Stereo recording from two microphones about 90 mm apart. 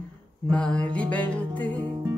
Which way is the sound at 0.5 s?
10° left (ahead or behind).